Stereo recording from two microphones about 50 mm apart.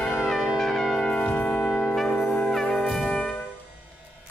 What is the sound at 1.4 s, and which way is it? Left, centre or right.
Trumpet, centre.